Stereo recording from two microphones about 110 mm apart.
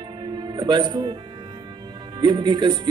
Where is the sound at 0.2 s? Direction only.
45° right (ahead or behind).